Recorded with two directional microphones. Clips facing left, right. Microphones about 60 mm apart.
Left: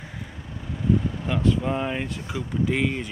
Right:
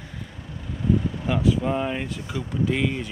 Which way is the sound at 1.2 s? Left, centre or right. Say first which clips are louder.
Right 1 dB; centre.